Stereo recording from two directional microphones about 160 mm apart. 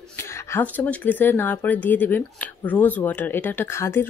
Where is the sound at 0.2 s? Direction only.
15° left (ahead or behind).